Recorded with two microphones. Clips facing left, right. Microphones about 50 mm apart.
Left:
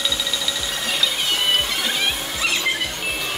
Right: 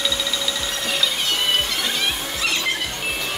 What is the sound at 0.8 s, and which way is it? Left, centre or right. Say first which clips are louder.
Music: even; centre.